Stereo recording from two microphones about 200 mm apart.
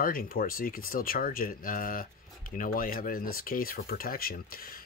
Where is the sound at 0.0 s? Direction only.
45° left (ahead or behind).